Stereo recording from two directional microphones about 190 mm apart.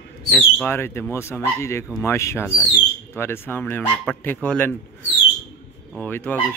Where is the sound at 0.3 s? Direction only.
10° left (ahead or behind).